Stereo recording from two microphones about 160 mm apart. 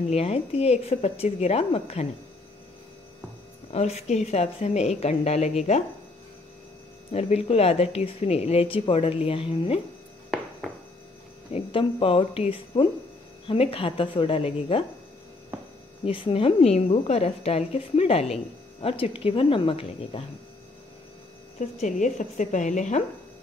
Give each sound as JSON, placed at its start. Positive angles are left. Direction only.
{"t": 0.1, "sound": "a woman's voice", "side_deg": 40}
{"t": 3.7, "sound": "a woman's voice", "side_deg": 45}
{"t": 7.1, "sound": "a woman's voice", "side_deg": 40}
{"t": 11.5, "sound": "a woman's voice", "side_deg": 35}
{"t": 16.1, "sound": "a woman's voice", "side_deg": 35}
{"t": 21.5, "sound": "speech", "side_deg": 50}